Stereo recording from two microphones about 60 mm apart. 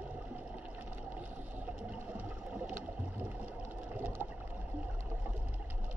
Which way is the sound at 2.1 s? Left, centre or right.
Right.